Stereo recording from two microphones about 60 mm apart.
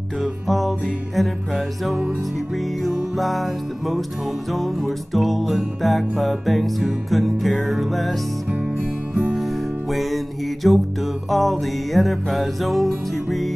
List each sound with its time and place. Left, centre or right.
0.2 s music: centre
8.5 s music: right
9.2 s music: centre